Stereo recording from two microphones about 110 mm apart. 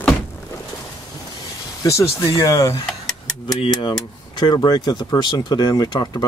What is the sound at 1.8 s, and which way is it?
Speech, 25° left (ahead or behind).